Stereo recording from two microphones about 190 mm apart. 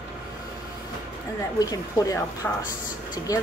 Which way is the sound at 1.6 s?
20° left (ahead or behind).